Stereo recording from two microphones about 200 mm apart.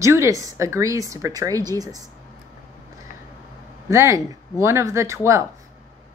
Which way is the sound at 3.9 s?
15° right (ahead or behind).